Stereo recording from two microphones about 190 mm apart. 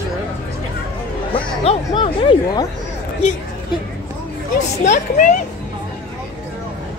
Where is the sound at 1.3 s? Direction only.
30° left (ahead or behind).